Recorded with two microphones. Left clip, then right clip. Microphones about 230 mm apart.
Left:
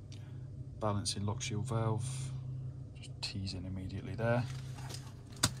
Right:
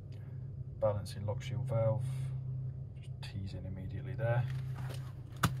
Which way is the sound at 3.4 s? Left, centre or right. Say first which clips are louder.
Left 4 dB; left.